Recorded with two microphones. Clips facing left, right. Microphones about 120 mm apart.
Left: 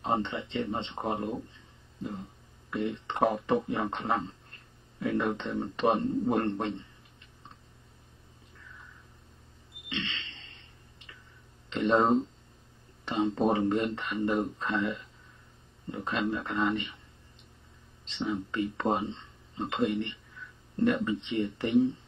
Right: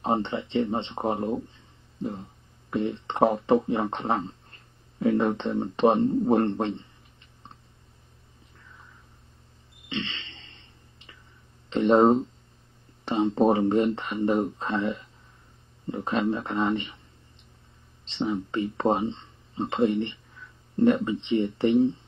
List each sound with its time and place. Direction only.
0.0 s speech: 30° right (ahead or behind)
2.7 s speech: 30° right (ahead or behind)
9.8 s a sound: 30° right (ahead or behind)
11.7 s speech: 30° right (ahead or behind)
18.0 s speech: 30° right (ahead or behind)